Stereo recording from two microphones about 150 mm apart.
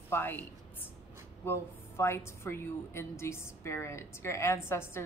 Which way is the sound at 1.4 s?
15° left (ahead or behind).